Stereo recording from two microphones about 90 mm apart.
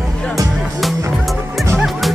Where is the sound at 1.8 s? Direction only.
Centre (ahead or behind).